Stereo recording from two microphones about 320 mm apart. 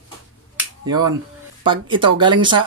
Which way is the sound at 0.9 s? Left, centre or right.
Centre.